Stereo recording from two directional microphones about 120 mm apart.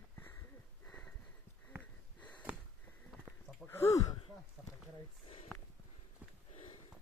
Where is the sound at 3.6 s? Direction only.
20° left (ahead or behind).